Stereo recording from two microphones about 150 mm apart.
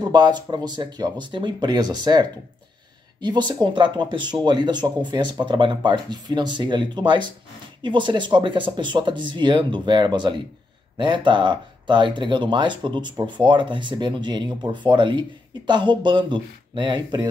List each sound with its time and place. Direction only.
0.0 s speech: 30° right (ahead or behind)